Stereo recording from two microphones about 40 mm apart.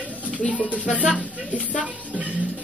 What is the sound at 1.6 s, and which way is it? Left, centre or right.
Speech, right.